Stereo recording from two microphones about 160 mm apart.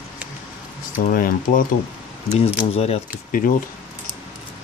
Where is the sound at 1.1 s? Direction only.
60° left (ahead or behind).